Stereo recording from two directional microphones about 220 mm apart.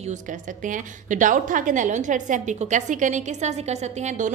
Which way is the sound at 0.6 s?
35° right (ahead or behind).